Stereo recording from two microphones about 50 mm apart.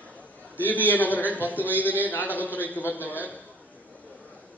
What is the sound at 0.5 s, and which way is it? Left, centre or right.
A man's voice, left.